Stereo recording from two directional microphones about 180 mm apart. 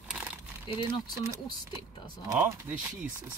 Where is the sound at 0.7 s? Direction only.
25° left (ahead or behind).